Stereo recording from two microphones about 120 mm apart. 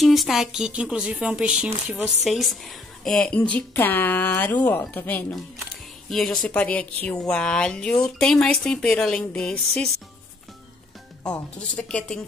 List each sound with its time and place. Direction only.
0.0 s a woman's voice: centre (ahead or behind); by 5.2 s 15° left (ahead or behind)
6.0 s a woman's voice: centre (ahead or behind)
11.2 s a woman's voice: 10° left (ahead or behind)